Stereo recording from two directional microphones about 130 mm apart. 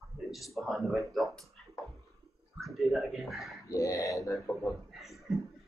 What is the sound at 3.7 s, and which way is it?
Speech, 25° left (ahead or behind).